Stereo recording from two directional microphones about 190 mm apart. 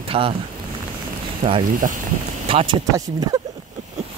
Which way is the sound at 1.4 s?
25° right (ahead or behind).